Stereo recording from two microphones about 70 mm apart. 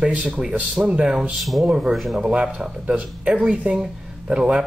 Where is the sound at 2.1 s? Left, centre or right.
Centre.